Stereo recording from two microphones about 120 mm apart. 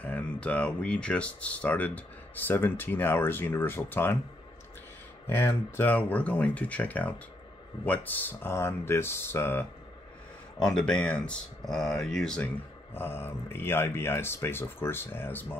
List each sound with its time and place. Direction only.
0.0 s speech: 10° left (ahead or behind)
5.2 s speech: 20° left (ahead or behind)
10.6 s speech: 5° left (ahead or behind)
12.9 s speech: 20° left (ahead or behind)